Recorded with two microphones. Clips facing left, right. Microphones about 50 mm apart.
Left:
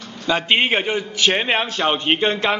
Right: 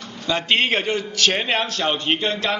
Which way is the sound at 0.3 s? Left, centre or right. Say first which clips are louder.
Left 2 dB; centre.